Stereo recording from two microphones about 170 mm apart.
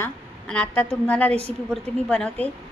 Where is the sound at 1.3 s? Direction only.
35° right (ahead or behind).